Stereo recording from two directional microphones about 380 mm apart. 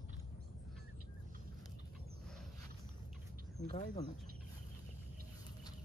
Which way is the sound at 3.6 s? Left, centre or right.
Left.